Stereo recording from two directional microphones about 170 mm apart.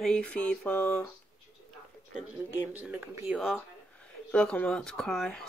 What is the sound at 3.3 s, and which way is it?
Speech, centre (ahead or behind).